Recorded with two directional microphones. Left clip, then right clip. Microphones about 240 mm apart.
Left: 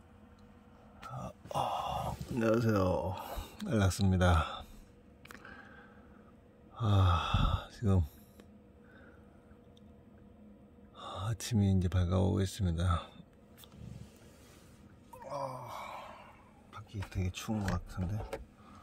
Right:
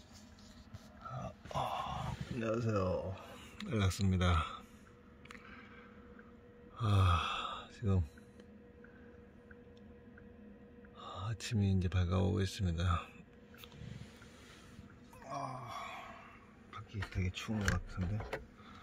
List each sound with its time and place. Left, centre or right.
1.1 s a sound: centre
2.3 s speech: left
3.5 s speech: centre
5.3 s a sound: left
6.8 s speech: centre
11.0 s speech: left
15.2 s sigh: centre
17.1 s speech: left